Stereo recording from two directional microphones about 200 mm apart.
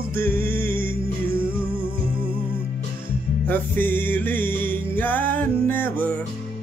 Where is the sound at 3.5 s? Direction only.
10° left (ahead or behind).